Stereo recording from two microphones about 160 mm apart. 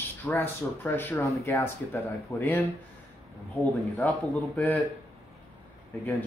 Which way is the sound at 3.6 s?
Centre (ahead or behind).